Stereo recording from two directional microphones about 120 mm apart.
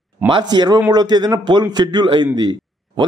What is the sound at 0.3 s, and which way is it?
Speech, 35° right (ahead or behind).